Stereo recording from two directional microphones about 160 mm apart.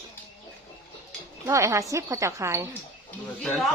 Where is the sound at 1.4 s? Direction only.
20° right (ahead or behind).